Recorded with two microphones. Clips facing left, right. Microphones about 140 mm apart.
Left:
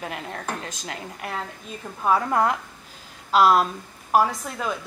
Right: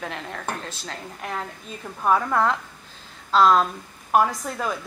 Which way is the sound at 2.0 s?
5° left (ahead or behind).